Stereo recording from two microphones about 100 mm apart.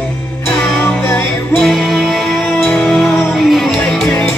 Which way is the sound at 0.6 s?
20° left (ahead or behind).